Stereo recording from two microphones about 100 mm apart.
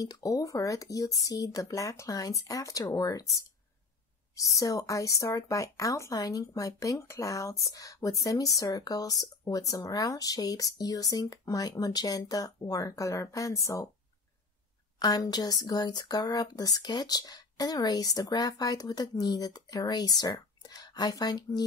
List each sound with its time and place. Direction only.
0.0 s speech: 35° left (ahead or behind)
15.0 s speech: 40° left (ahead or behind)